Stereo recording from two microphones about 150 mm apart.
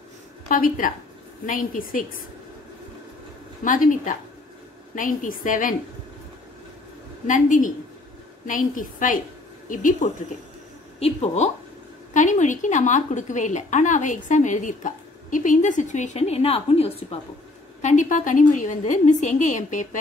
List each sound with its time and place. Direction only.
0.5 s a woman's voice: 65° left (ahead or behind)
3.6 s a woman's voice: 60° left (ahead or behind)
7.2 s a woman's voice: 60° left (ahead or behind)
11.0 s speech: 40° left (ahead or behind)
12.1 s a woman's voice: 55° left (ahead or behind); by 17.2 s 40° left (ahead or behind)
17.8 s a woman's voice: 55° left (ahead or behind)